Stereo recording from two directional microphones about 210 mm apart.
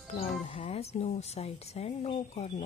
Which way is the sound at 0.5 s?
25° left (ahead or behind).